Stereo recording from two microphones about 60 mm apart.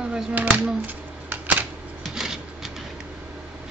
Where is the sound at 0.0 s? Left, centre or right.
Centre.